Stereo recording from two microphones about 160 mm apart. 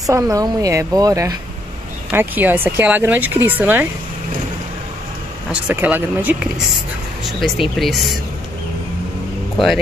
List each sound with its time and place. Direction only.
0.0 s a woman's voice: 20° right (ahead or behind)
5.5 s speech: 10° right (ahead or behind)
7.2 s speech: centre (ahead or behind)